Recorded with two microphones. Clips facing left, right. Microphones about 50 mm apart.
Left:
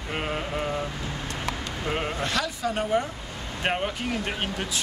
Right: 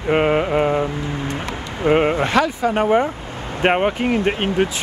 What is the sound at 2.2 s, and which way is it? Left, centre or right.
Speech, right.